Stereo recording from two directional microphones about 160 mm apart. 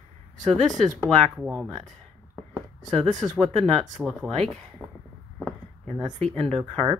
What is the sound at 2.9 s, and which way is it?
Speech, 50° right (ahead or behind).